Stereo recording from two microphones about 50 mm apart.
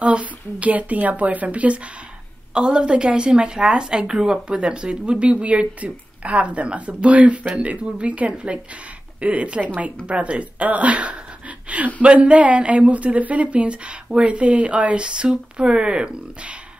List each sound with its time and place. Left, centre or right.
0.0 s a woman's voice: right